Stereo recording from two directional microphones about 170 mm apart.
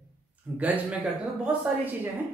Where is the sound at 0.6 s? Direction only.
10° right (ahead or behind).